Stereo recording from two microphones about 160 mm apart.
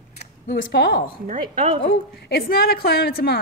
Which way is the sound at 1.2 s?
55° right (ahead or behind).